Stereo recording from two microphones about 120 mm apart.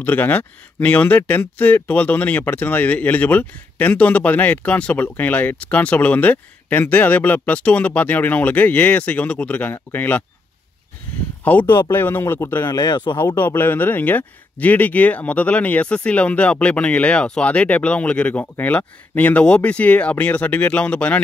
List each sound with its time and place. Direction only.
0.0 s speech: 15° left (ahead or behind)
11.4 s speech: 15° left (ahead or behind)
12.6 s speech: 35° left (ahead or behind)
13.2 s speech: 20° left (ahead or behind)